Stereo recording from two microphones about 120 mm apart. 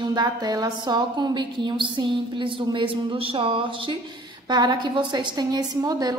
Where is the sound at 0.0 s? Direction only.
35° right (ahead or behind).